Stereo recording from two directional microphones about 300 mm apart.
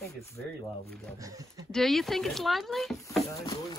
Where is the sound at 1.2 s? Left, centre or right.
Centre.